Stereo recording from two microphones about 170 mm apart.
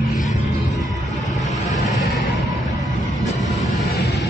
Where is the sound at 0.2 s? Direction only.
45° left (ahead or behind).